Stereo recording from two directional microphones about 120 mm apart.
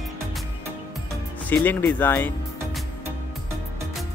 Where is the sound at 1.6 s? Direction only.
15° left (ahead or behind).